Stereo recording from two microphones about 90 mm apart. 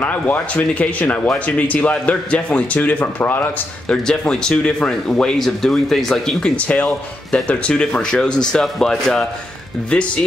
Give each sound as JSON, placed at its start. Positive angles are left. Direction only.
{"t": 0.0, "sound": "speech", "side_deg": 15}
{"t": 3.9, "sound": "speech", "side_deg": 10}